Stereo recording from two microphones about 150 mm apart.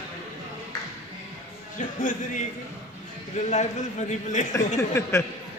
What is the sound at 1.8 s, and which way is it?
A man's voice, 60° left (ahead or behind).